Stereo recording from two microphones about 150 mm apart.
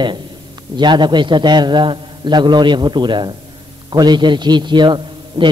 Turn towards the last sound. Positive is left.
turn(degrees=-30)  # may be behind; listen again after turning